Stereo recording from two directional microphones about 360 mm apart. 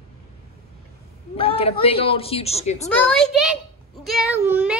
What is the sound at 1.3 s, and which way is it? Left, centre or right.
Speech, centre.